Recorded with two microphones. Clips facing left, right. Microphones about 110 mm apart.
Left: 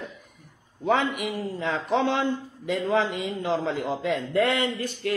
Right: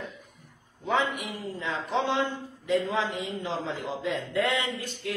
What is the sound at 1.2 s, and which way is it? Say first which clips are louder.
A man's voice: left 6 dB; 65° left (ahead or behind).